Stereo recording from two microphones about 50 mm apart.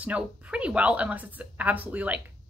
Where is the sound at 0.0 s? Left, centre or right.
Right.